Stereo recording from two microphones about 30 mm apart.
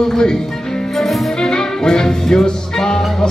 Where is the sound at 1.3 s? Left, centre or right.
Left.